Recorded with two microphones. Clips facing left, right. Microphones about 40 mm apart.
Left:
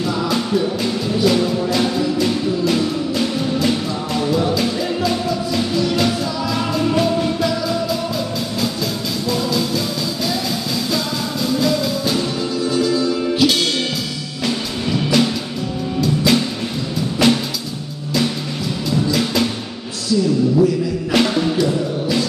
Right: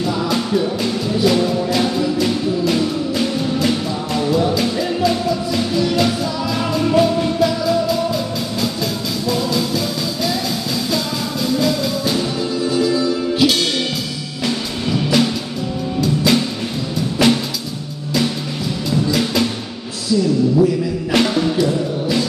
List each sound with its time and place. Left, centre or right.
0.1 s music: centre
9.3 s music: centre
11.6 s music: centre
16.3 s music: centre
18.9 s music: centre
21.1 s music: centre